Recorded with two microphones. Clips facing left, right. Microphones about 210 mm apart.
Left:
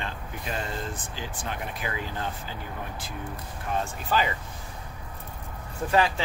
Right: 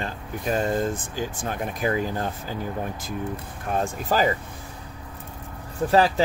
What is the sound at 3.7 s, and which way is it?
Speech, 45° right (ahead or behind).